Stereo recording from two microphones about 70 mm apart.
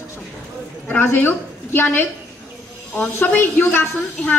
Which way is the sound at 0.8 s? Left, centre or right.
Left.